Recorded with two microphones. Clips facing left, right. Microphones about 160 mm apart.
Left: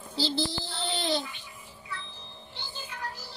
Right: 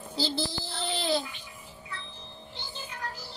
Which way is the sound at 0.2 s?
5° right (ahead or behind).